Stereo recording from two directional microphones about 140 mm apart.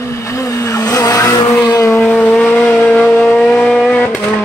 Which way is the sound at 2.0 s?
5° left (ahead or behind).